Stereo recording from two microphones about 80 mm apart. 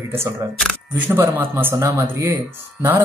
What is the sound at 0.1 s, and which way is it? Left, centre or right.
Speech, right.